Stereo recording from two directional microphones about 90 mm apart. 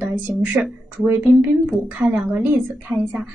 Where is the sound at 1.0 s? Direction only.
20° right (ahead or behind).